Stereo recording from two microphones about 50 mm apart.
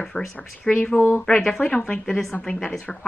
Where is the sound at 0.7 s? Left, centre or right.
Left.